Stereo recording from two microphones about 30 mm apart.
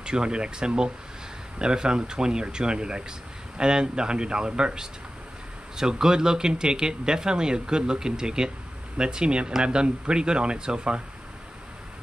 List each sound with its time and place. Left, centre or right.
0.0 s speech: right
5.8 s speech: right